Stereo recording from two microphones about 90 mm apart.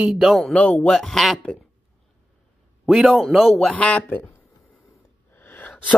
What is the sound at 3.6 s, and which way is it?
Speech, 15° left (ahead or behind).